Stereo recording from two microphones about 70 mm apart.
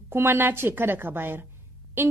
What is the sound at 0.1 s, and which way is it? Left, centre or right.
A woman's voice, right.